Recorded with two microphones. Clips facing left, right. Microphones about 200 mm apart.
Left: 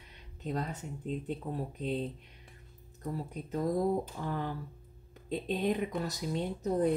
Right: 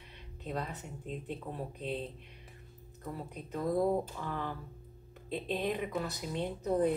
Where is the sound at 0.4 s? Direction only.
40° left (ahead or behind).